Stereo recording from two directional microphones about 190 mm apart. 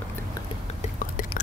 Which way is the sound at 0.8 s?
45° left (ahead or behind).